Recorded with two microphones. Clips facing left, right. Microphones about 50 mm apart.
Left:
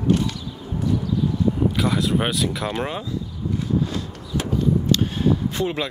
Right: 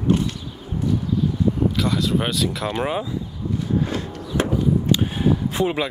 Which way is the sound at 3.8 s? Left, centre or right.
Right.